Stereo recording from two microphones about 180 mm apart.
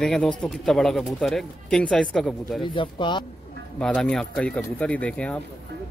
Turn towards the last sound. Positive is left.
turn(degrees=5)  # may be behind; listen again after turning